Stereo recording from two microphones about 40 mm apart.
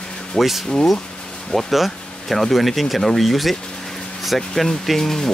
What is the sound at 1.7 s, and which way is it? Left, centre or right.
Speech, centre.